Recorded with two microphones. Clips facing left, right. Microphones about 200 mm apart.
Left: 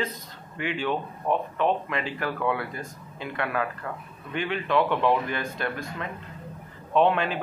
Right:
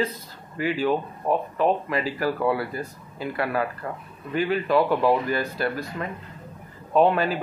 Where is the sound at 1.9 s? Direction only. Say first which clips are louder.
Right 5 dB; 35° right (ahead or behind).